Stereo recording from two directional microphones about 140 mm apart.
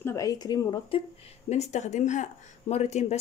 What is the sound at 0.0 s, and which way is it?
Speech, 20° left (ahead or behind).